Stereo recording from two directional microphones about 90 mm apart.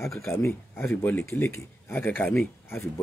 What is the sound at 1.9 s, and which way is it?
Speech, 20° left (ahead or behind).